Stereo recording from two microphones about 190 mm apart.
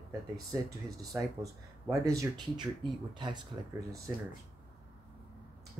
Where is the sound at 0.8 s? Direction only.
15° right (ahead or behind).